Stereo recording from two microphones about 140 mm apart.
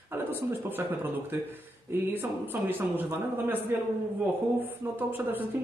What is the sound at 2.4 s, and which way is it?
Speech, 15° right (ahead or behind).